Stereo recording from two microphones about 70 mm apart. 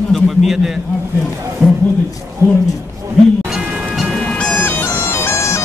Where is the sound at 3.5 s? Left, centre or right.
Centre.